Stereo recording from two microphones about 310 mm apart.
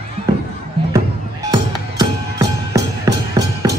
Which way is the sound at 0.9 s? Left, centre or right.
Centre.